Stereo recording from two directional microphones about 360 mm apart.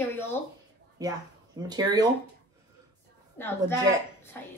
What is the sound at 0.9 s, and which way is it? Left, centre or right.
Speech, centre.